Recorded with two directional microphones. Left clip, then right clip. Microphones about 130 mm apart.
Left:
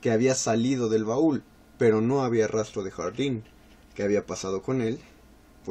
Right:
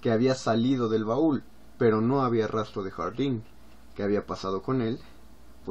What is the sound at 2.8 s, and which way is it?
Speech, 20° left (ahead or behind).